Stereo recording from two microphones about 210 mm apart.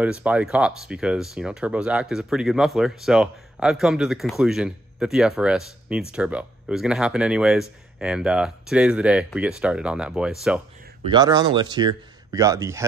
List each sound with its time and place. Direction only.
0.0 s speech: 5° right (ahead or behind)
11.1 s a man's voice: 20° right (ahead or behind)